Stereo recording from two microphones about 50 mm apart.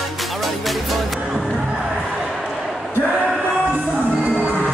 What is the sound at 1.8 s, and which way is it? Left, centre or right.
Crowd, centre.